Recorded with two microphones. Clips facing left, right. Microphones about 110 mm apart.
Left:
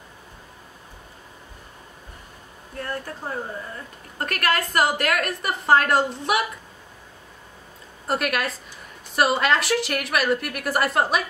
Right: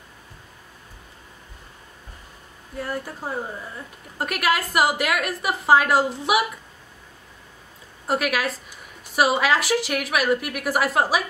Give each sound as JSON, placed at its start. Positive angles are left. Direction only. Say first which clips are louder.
{"t": 2.8, "sound": "a woman's voice", "louder": "right 1 dB", "side_deg": -10}
{"t": 8.1, "sound": "a woman's voice", "louder": "right 1 dB", "side_deg": -5}